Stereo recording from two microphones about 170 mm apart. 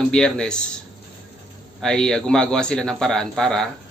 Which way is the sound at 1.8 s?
5° left (ahead or behind).